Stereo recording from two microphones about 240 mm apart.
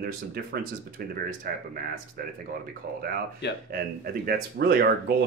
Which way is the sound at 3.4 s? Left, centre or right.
Left.